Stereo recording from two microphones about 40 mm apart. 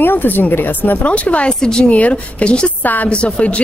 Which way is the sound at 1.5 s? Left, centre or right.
Centre.